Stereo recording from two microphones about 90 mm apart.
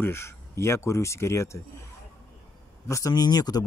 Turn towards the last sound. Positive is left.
turn(degrees=45)  # may be behind; listen again after turning